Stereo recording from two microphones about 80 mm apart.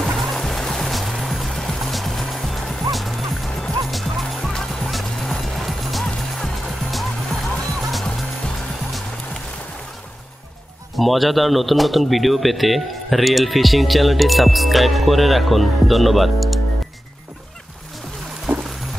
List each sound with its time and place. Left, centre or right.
0.0 s music: centre
11.0 s speech: centre
18.5 s music: right